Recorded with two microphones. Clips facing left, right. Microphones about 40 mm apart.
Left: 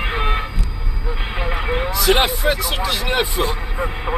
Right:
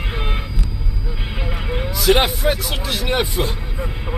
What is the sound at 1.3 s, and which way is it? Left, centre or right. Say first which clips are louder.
Vehicle: left 4 dB; left.